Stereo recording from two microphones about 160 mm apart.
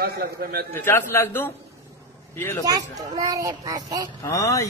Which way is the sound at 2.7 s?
25° right (ahead or behind).